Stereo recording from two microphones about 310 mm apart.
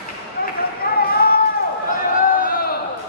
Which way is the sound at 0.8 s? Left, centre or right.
Left.